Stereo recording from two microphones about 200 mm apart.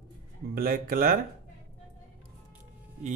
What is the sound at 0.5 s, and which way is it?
Speech, 45° right (ahead or behind).